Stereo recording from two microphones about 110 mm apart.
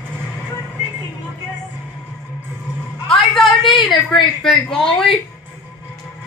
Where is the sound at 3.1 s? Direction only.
Centre (ahead or behind).